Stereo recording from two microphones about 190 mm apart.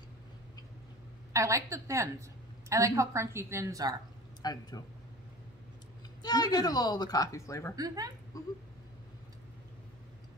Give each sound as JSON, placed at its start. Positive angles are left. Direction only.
{"t": 1.3, "sound": "a woman's voice", "side_deg": -15}
{"t": 4.4, "sound": "speech", "side_deg": 20}
{"t": 6.2, "sound": "speech", "side_deg": 20}
{"t": 7.7, "sound": "speech", "side_deg": -20}
{"t": 8.3, "sound": "a sound", "side_deg": 15}